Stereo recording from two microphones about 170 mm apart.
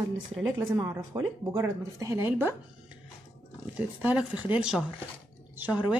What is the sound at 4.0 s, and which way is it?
Speech, 5° right (ahead or behind).